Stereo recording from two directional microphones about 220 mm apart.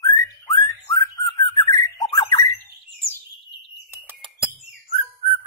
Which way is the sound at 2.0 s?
20° left (ahead or behind).